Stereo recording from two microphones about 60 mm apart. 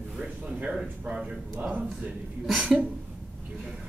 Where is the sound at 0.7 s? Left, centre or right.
Centre.